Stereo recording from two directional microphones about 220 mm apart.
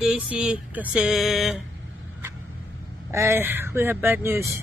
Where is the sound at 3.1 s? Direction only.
10° right (ahead or behind).